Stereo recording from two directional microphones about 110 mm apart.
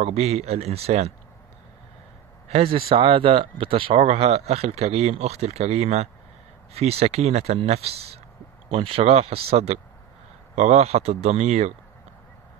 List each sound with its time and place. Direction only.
0.0 s speech: 75° right (ahead or behind)
2.5 s speech: 60° right (ahead or behind)
10.5 s speech: 85° right